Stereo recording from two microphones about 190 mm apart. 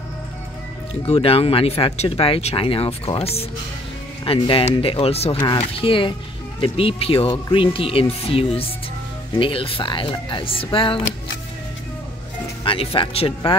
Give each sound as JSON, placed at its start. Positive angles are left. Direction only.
{"t": 1.0, "sound": "speech", "side_deg": 30}
{"t": 12.6, "sound": "speech", "side_deg": 30}